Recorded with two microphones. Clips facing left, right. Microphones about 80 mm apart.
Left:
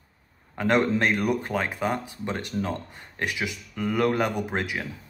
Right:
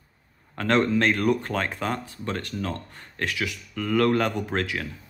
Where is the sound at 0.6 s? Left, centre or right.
Centre.